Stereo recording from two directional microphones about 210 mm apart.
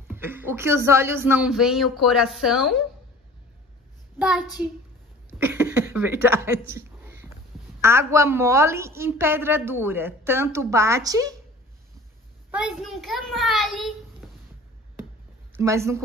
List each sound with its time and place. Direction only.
0.1 s a woman's voice: 10° right (ahead or behind)
4.2 s a child's voice: 5° right (ahead or behind)
6.7 s a sound: 10° right (ahead or behind)
7.8 s a woman's voice: 10° right (ahead or behind)
12.4 s a child's voice: 5° right (ahead or behind)
15.5 s a woman's voice: 15° right (ahead or behind)